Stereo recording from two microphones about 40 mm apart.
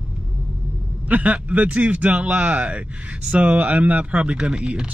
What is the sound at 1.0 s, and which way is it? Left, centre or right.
Speech, right.